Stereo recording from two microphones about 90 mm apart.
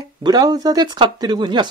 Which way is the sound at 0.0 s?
50° right (ahead or behind).